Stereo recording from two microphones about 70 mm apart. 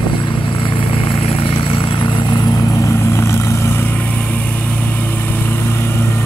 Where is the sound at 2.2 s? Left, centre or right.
Left.